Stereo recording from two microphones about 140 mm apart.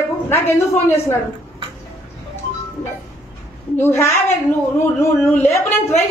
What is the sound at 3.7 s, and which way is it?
A woman's voice, 15° left (ahead or behind).